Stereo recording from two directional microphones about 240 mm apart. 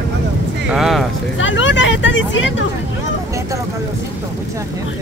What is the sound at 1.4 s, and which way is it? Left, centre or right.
Speech, left.